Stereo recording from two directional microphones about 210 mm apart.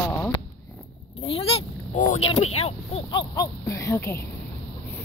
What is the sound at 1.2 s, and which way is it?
Speech, 25° left (ahead or behind).